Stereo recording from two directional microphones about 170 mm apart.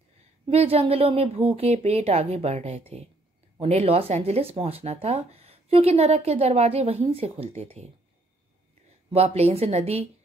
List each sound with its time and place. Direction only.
0.5 s speech: 35° right (ahead or behind)
9.1 s speech: 35° right (ahead or behind)